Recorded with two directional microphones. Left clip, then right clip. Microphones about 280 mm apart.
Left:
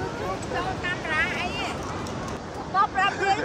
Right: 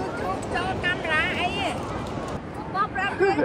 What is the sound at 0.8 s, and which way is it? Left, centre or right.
Vehicle, right.